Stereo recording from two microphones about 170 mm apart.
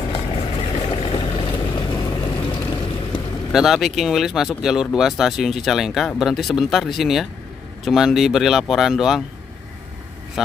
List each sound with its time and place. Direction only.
0.1 s vehicle: 35° left (ahead or behind)
3.5 s speech: centre (ahead or behind)